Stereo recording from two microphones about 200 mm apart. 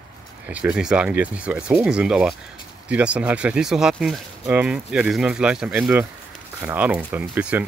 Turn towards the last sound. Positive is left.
turn(degrees=-10)  # may be behind; listen again after turning